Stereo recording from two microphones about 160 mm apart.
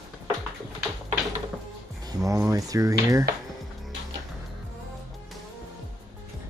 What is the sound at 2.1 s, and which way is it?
Speech, 20° right (ahead or behind).